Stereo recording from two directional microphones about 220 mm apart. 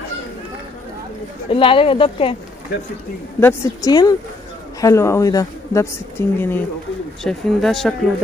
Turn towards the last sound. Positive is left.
turn(degrees=0)  # may be behind; listen again after turning